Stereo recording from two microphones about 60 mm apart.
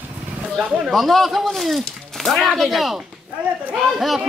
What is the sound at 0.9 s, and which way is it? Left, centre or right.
Speech, centre.